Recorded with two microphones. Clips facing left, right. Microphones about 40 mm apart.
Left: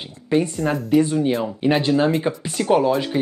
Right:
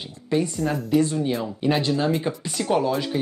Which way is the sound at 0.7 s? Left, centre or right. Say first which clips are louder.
Left 4 dB; centre.